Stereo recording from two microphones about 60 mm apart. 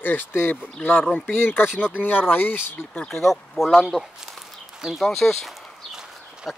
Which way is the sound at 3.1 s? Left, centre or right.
Centre.